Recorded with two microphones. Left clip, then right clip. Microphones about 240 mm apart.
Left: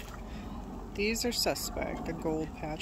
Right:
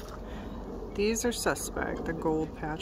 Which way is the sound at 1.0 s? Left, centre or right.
Centre.